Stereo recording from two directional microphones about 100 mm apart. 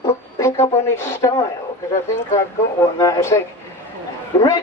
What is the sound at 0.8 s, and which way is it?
Speech, 25° left (ahead or behind).